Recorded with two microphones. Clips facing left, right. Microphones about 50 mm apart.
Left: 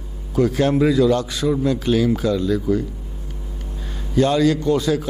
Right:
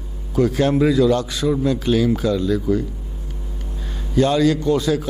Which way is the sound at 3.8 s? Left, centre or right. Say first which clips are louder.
Even; centre.